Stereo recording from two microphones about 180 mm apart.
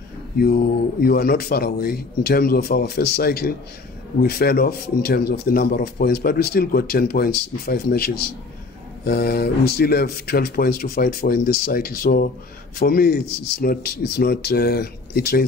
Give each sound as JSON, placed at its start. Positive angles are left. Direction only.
{"t": 1.0, "sound": "speech", "side_deg": 55}